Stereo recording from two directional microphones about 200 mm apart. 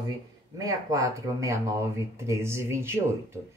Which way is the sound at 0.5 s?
15° right (ahead or behind).